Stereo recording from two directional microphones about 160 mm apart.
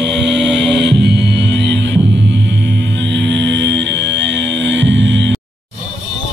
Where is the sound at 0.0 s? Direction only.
90° right.